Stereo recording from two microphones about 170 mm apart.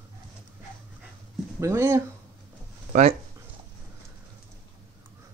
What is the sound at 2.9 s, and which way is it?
Speech, 45° right (ahead or behind).